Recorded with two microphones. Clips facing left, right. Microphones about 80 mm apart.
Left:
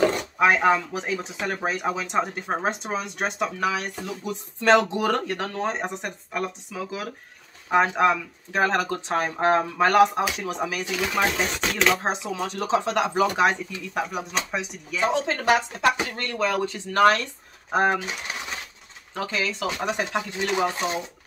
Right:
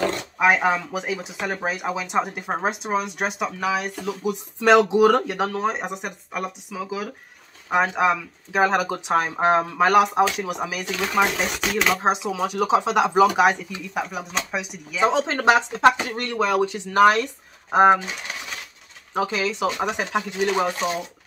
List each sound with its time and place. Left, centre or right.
0.4 s speech: centre
10.9 s speech: centre
14.1 s speech: centre
15.0 s speech: right
19.1 s speech: centre